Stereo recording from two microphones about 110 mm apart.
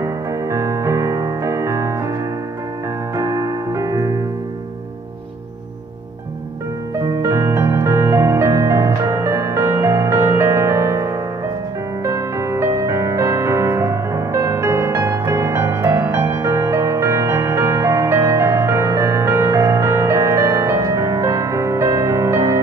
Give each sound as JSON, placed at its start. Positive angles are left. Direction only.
{"t": 0.0, "sound": "keyboard", "side_deg": -30}
{"t": 3.2, "sound": "music", "side_deg": -30}
{"t": 7.0, "sound": "music", "side_deg": -25}